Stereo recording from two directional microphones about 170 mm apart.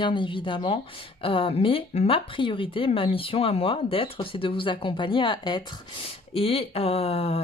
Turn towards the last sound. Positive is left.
turn(degrees=35)  # may be behind; listen again after turning